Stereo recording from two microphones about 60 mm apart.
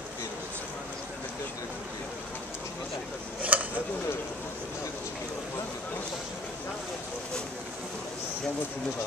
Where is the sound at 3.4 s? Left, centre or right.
Right.